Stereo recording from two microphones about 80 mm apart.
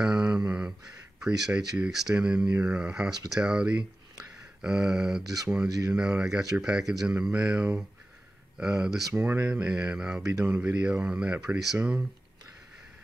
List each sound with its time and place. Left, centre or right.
0.0 s a sound: centre
1.2 s speech: centre
5.2 s speech: right
5.9 s speech: centre
9.1 s speech: right